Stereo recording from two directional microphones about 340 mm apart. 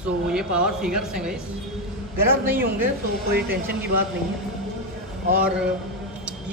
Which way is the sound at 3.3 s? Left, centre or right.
Right.